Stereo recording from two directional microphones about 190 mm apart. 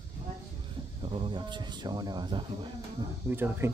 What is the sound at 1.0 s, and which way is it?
Speech, 25° right (ahead or behind).